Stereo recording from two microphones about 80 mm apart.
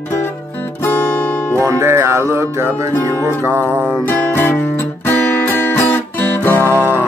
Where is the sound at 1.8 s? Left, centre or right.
Right.